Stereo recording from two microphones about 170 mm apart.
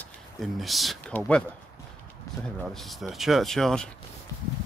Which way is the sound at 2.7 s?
Centre (ahead or behind).